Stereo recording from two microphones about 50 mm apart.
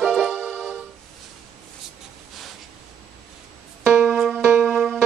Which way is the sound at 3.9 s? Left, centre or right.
Centre.